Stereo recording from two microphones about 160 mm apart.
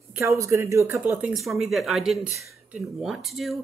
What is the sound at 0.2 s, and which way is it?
Speech, 20° right (ahead or behind).